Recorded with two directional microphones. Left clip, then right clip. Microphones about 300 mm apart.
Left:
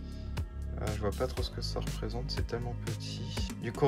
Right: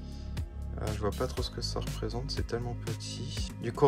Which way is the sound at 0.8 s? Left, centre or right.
Centre.